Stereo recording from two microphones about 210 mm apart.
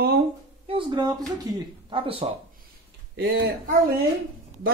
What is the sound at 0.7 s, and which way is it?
Speech, 25° right (ahead or behind).